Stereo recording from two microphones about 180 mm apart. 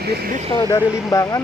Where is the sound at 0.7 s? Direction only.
20° left (ahead or behind).